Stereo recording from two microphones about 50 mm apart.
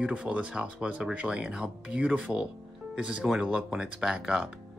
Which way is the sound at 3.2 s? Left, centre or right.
Centre.